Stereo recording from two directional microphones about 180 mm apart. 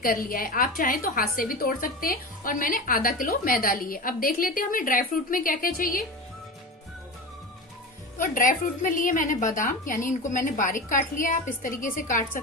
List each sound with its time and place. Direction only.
0.0 s a woman's voice: 50° left (ahead or behind)
8.2 s a woman's voice: 45° left (ahead or behind)